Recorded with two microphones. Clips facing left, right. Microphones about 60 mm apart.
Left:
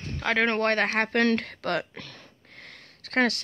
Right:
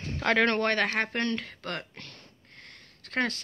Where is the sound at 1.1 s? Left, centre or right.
Left.